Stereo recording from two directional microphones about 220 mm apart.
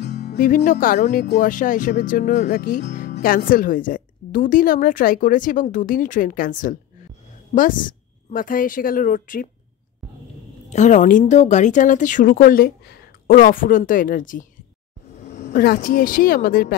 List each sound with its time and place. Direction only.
0.3 s speech: 40° left (ahead or behind)
10.7 s speech: 35° left (ahead or behind)